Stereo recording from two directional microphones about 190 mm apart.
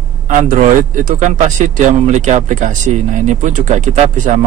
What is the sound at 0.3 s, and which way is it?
Speech, 45° right (ahead or behind).